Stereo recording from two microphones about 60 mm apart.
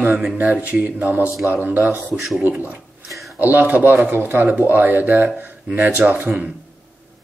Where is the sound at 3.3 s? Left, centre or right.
Right.